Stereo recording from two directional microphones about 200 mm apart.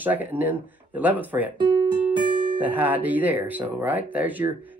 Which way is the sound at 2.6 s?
10° right (ahead or behind).